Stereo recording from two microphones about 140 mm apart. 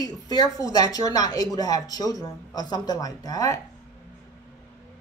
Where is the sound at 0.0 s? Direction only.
25° left (ahead or behind).